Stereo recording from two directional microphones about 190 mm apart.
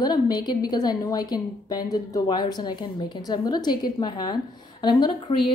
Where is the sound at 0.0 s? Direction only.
20° left (ahead or behind).